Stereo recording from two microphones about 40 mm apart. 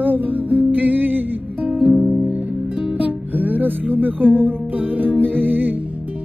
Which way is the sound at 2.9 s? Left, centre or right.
Right.